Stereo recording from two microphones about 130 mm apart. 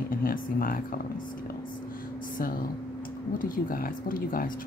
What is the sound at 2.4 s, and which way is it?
Speech, 90° left.